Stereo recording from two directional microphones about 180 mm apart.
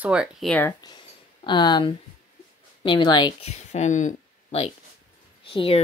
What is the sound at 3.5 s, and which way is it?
Speech, 40° left (ahead or behind).